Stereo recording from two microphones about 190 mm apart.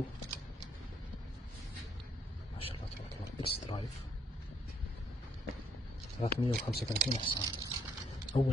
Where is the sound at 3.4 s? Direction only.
30° left (ahead or behind).